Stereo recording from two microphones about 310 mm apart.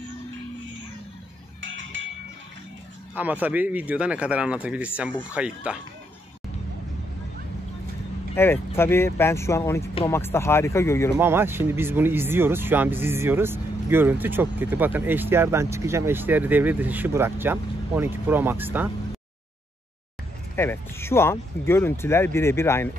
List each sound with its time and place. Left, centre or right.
1.6 s music: right
3.2 s speech: centre
8.4 s speech: centre
11.1 s speech: centre
20.5 s speech: centre